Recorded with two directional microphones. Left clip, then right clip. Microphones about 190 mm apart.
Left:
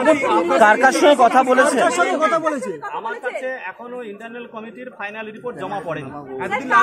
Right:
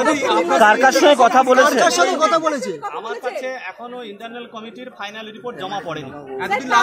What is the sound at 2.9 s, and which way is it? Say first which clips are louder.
Speech: even; 15° left (ahead or behind).